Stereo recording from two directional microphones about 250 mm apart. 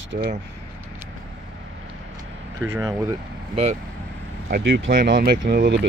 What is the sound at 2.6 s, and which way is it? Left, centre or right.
Speech, centre.